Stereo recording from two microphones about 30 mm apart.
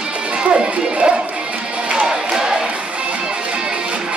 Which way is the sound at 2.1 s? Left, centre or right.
Right.